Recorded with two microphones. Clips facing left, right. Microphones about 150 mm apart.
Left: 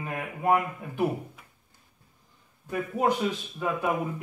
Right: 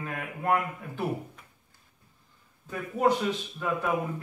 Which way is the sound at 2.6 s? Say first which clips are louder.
Even; 10° left (ahead or behind).